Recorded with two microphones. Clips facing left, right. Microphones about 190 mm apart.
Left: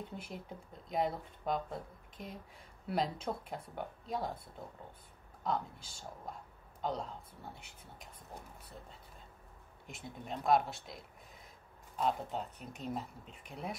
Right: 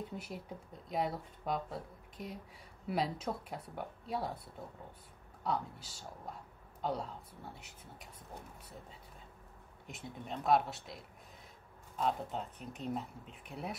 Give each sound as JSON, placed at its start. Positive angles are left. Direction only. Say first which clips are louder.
{"t": 0.0, "sound": "speech", "louder": "right 1 dB", "side_deg": -5}
{"t": 5.4, "sound": "speech", "louder": "even", "side_deg": -5}
{"t": 9.8, "sound": "speech", "louder": "even", "side_deg": 0}